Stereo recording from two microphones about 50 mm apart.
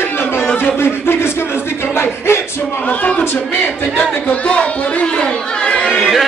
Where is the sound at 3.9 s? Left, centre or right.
Left.